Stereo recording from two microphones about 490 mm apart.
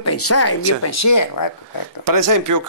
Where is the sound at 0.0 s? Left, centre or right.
Left.